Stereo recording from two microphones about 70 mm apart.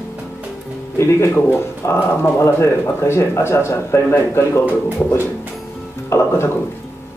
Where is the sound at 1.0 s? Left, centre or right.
Left.